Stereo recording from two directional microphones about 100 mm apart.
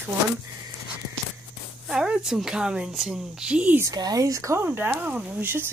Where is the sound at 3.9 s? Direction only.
40° right (ahead or behind).